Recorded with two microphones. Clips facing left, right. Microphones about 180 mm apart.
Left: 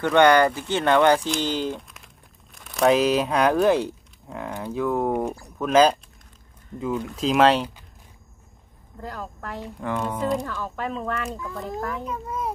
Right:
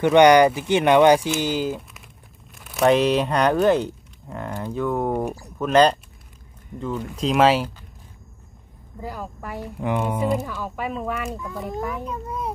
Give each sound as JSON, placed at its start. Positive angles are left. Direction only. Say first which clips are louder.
{"t": 0.0, "sound": "speech", "louder": "right 3 dB", "side_deg": -15}
{"t": 9.0, "sound": "speech", "louder": "right 2 dB", "side_deg": -10}